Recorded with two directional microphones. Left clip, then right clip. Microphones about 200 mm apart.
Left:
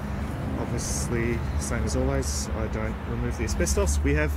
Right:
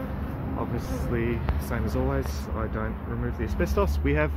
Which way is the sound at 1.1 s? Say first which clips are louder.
Right 1 dB; centre (ahead or behind).